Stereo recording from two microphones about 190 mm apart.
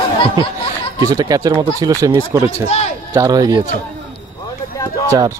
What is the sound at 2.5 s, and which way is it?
Speech, 35° left (ahead or behind).